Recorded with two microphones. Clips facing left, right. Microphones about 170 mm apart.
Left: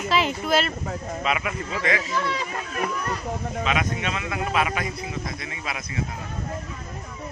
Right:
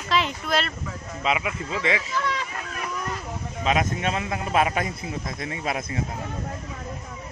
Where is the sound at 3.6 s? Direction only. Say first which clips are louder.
Right 4 dB; 40° right (ahead or behind).